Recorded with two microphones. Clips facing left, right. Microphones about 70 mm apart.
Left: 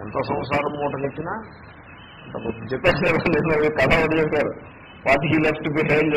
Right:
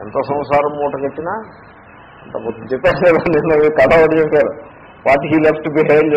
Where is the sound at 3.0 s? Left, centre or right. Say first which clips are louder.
Right 8 dB; right.